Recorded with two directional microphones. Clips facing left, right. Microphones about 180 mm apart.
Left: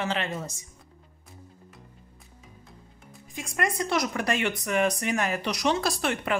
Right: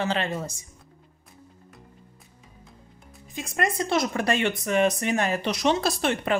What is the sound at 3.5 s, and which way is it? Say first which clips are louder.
Speech: right 2 dB; 25° right (ahead or behind).